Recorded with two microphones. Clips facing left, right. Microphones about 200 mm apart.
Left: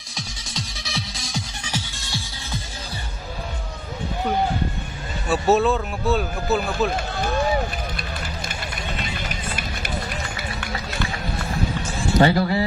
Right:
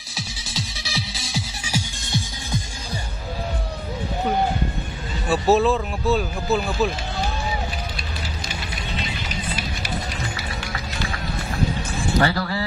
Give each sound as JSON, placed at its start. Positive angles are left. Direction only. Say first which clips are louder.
{"t": 0.1, "sound": "music", "louder": "right 1 dB", "side_deg": -5}
{"t": 5.3, "sound": "speech", "louder": "right 1 dB", "side_deg": 0}
{"t": 9.3, "sound": "music", "louder": "right 1 dB", "side_deg": 55}
{"t": 12.2, "sound": "speech", "louder": "left 5 dB", "side_deg": 20}